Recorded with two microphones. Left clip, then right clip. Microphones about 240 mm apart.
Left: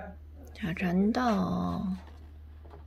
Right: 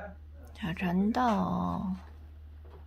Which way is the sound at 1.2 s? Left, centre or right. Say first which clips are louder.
Right 1 dB; centre.